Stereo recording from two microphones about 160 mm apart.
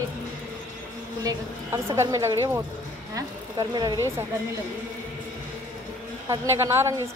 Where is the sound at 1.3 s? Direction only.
20° right (ahead or behind).